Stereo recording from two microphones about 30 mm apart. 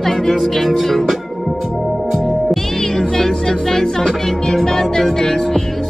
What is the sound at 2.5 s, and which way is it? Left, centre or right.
Music, centre.